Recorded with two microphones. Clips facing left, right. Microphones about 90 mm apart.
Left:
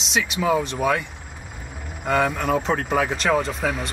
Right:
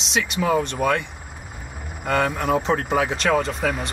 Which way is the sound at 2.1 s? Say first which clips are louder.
Even; centre (ahead or behind).